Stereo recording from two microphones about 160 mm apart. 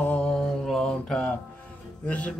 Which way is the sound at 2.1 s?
10° left (ahead or behind).